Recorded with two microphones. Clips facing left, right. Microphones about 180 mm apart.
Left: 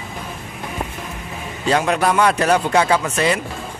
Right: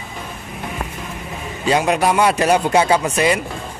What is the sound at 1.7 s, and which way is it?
Speech, 10° right (ahead or behind).